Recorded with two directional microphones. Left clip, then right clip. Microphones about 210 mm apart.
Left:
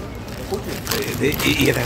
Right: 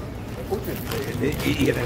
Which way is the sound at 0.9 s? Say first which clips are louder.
Left 6 dB; 45° left (ahead or behind).